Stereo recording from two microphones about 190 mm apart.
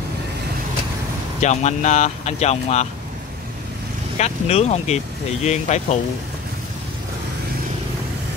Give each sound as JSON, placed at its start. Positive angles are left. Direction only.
{"t": 1.4, "sound": "speech", "side_deg": 40}
{"t": 4.2, "sound": "speech", "side_deg": 35}